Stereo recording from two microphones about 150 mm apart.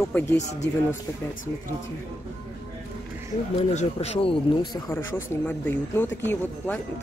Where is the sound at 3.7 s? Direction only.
45° left (ahead or behind).